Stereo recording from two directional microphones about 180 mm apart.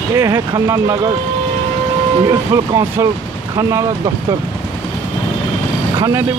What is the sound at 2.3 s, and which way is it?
Speech, 20° right (ahead or behind).